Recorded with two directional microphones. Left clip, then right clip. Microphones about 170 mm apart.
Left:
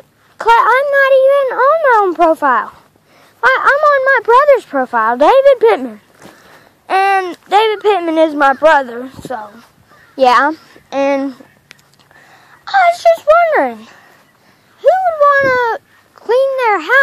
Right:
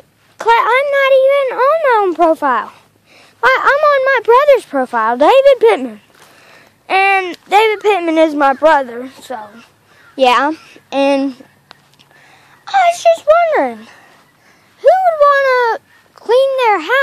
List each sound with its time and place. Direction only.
0.4 s speech: 10° right (ahead or behind)
3.2 s speech: 25° right (ahead or behind)
8.8 s speech: centre (ahead or behind)
10.1 s speech: 20° right (ahead or behind); by 11.3 s 35° right (ahead or behind)
12.6 s speech: 20° right (ahead or behind)
14.8 s speech: 30° right (ahead or behind)